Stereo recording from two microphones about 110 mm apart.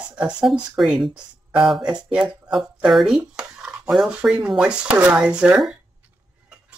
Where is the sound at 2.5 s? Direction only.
Centre (ahead or behind).